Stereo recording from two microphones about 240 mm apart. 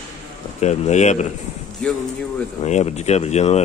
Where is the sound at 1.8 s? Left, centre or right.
Centre.